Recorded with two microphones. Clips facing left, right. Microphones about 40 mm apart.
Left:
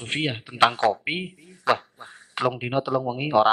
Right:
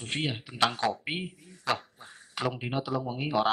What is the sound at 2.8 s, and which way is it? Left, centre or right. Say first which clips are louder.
Speech: left 8 dB; left.